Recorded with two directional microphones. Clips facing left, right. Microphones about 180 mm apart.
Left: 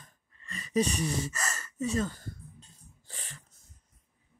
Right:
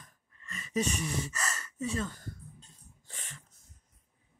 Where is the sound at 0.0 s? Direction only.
35° left (ahead or behind).